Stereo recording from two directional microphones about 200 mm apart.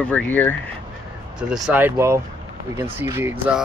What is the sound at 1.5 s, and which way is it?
Speech, 5° right (ahead or behind).